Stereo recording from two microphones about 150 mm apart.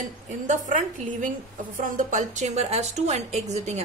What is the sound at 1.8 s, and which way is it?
A woman's voice, 60° right (ahead or behind).